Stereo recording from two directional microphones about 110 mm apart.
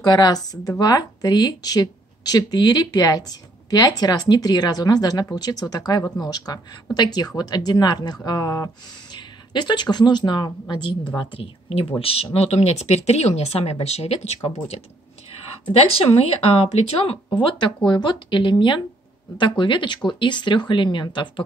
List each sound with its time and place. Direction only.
0.0 s a woman's voice: 35° left (ahead or behind)
11.1 s a woman's voice: 55° left (ahead or behind); by 14.8 s 80° left
16.0 s a woman's voice: 60° left (ahead or behind)
17.4 s a woman's voice: 45° left (ahead or behind)